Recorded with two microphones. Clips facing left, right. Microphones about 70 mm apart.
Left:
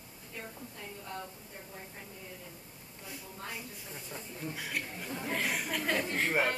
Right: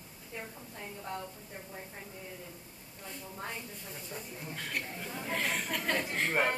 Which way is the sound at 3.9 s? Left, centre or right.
Centre.